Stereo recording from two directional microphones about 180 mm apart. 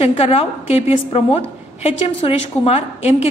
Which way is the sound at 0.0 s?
35° left (ahead or behind).